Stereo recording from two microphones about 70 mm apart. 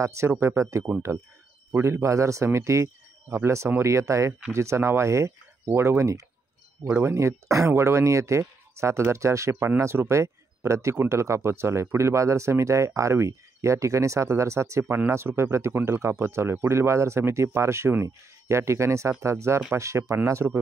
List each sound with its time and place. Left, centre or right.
0.0 s speech: right